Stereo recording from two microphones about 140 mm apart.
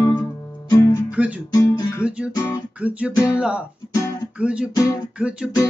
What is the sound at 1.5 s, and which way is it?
Music, 25° left (ahead or behind).